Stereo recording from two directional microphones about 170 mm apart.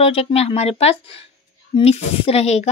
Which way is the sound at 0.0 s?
35° left (ahead or behind).